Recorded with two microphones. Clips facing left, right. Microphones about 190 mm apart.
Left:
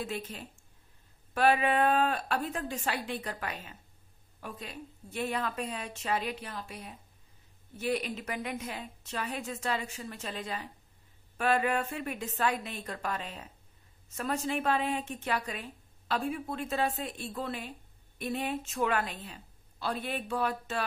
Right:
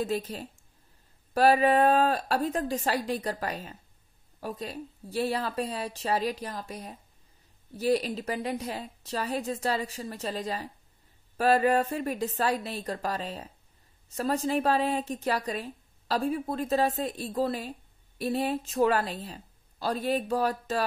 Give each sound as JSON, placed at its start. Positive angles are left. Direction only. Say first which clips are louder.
{"t": 0.0, "sound": "a woman's voice", "louder": "right 7 dB", "side_deg": -40}